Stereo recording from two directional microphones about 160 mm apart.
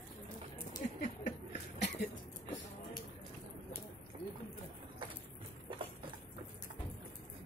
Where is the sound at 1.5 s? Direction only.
90° left.